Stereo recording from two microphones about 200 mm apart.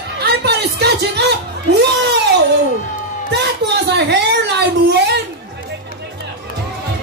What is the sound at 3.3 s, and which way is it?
Speech, 55° right (ahead or behind).